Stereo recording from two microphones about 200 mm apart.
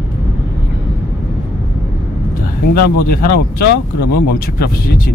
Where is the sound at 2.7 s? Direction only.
50° left (ahead or behind).